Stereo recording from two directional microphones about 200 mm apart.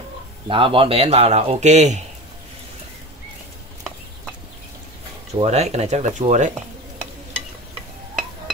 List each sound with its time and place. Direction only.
0.5 s speech: 25° right (ahead or behind)
5.4 s speech: 35° right (ahead or behind)